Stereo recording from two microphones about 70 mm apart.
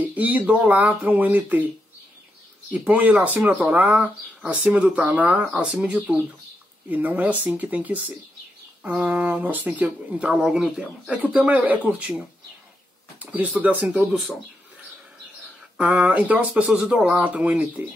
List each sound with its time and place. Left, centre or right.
0.0 s speech: right
2.7 s speech: right
6.1 s speech: right
15.8 s speech: right